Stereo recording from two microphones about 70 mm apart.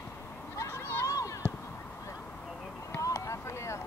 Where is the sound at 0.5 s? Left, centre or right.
Left.